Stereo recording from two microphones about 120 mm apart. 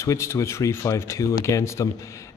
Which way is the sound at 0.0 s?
25° left (ahead or behind).